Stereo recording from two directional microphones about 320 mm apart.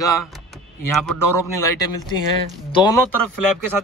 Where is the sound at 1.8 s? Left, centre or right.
Right.